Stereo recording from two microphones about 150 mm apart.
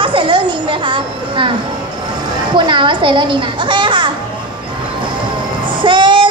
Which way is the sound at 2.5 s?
30° right (ahead or behind).